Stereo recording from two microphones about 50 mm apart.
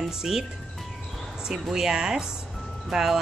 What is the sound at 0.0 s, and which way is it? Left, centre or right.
Speech, centre.